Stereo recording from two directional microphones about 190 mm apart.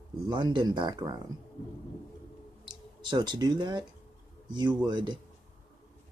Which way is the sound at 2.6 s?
25° right (ahead or behind).